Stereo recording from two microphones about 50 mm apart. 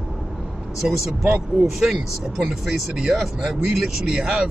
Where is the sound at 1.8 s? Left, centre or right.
Centre.